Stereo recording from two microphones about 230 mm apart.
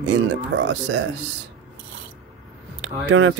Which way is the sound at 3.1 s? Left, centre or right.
Right.